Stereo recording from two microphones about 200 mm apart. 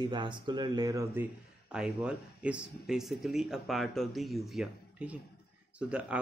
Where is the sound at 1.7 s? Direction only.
5° right (ahead or behind).